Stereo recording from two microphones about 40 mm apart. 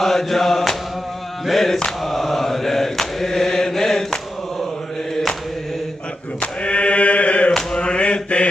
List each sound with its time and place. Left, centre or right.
0.0 s mantra: centre
6.4 s a sound: left
7.8 s mantra: left